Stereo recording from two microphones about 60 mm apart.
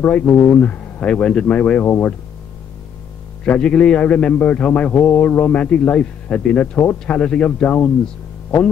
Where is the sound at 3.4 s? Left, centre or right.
Centre.